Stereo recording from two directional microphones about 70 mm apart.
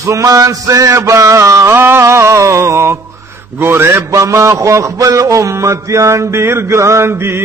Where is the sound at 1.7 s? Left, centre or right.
Right.